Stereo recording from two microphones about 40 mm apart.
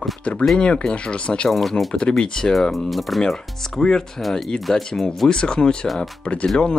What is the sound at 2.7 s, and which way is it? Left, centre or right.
Speech, centre.